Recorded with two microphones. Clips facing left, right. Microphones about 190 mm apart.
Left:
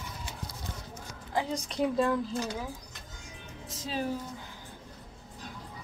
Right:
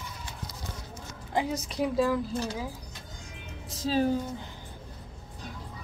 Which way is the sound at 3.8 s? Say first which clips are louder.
Right 8 dB; 30° right (ahead or behind).